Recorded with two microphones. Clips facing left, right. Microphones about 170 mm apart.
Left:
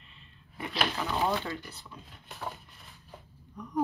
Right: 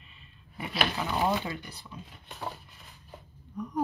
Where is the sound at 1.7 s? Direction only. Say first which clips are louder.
Right 2 dB; 10° right (ahead or behind).